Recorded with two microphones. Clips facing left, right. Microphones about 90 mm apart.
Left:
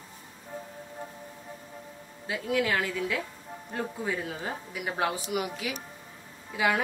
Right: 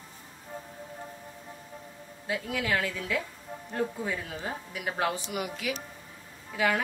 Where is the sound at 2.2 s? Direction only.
25° left (ahead or behind).